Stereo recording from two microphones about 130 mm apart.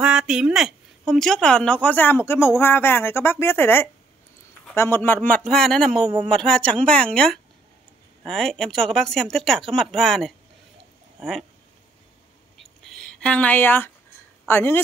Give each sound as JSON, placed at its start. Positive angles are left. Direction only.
{"t": 0.0, "sound": "speech", "side_deg": -5}
{"t": 5.4, "sound": "speech", "side_deg": 5}
{"t": 12.5, "sound": "a sound", "side_deg": 5}
{"t": 14.5, "sound": "speech", "side_deg": 15}